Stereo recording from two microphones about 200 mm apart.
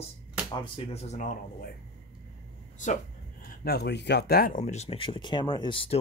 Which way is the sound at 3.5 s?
50° left (ahead or behind).